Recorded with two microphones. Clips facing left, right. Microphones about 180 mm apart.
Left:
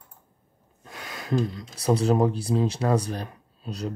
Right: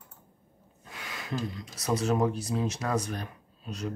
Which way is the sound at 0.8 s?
40° left (ahead or behind).